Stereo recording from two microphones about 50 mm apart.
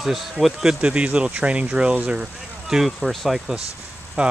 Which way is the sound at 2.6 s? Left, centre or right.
Centre.